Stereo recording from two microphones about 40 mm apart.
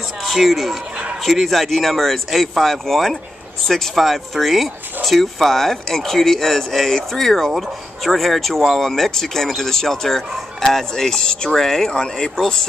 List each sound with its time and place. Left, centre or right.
0.2 s speech: centre